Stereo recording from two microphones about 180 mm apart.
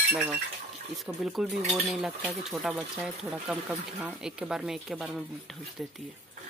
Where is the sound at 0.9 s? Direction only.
Centre (ahead or behind).